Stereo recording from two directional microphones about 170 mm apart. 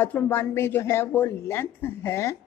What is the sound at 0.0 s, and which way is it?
A woman's voice, 15° left (ahead or behind).